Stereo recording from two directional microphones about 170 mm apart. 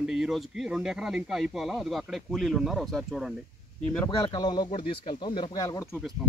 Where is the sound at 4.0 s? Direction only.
20° left (ahead or behind).